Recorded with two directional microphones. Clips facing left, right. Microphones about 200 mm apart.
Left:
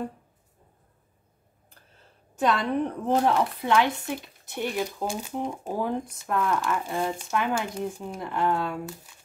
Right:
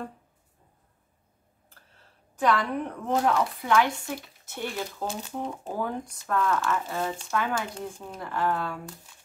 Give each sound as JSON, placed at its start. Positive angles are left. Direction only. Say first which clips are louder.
{"t": 2.3, "sound": "speech", "louder": "left 1 dB", "side_deg": 25}